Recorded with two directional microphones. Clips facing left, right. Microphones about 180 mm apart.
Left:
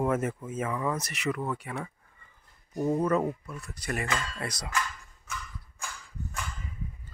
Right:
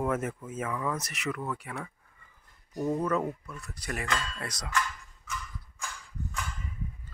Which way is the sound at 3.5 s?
Centre (ahead or behind).